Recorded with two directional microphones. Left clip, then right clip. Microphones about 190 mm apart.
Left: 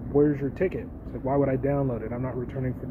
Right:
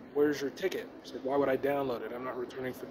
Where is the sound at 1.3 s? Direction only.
20° right (ahead or behind).